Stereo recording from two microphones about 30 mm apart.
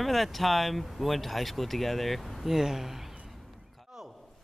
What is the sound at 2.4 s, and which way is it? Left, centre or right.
Speech, centre.